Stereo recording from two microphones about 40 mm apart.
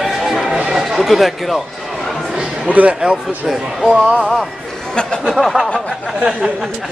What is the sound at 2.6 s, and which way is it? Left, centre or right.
Speech, right.